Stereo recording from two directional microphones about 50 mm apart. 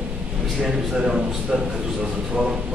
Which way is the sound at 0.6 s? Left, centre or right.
Centre.